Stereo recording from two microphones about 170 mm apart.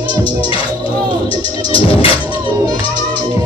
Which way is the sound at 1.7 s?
30° left (ahead or behind).